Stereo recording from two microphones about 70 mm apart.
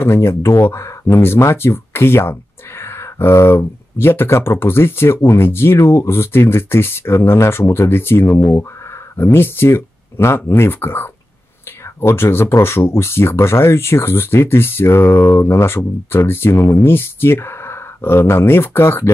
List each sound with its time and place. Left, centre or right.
0.0 s speech: left